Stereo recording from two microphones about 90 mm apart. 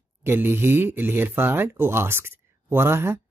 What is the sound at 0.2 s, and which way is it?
Speech, 25° right (ahead or behind).